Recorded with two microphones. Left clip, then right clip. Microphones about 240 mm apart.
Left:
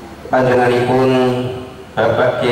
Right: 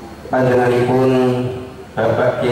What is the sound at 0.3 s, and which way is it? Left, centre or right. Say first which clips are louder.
A man's voice: left 2 dB; centre.